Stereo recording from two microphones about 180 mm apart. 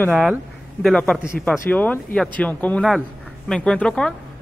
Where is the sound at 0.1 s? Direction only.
5° right (ahead or behind).